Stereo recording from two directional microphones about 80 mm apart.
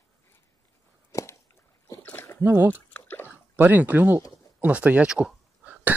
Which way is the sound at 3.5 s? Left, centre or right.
Right.